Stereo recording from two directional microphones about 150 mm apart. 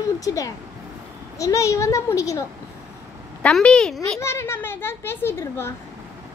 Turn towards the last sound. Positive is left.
turn(degrees=15)  # may be behind; listen again after turning